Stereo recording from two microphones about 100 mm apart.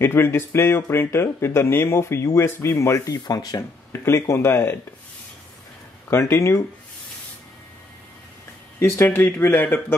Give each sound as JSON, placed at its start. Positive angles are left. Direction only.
{"t": 0.0, "sound": "speech", "side_deg": 25}
{"t": 3.3, "sound": "speech", "side_deg": 40}
{"t": 4.0, "sound": "speech", "side_deg": 25}
{"t": 6.0, "sound": "speech", "side_deg": 25}
{"t": 8.7, "sound": "speech", "side_deg": 25}